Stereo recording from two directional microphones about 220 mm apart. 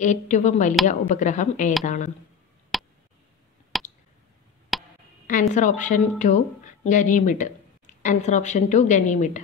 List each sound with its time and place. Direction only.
0.0 s speech: 35° left (ahead or behind)
2.7 s a sound: centre (ahead or behind)
5.5 s speech: 35° left (ahead or behind)